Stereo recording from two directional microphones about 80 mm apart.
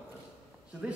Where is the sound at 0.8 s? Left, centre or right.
Centre.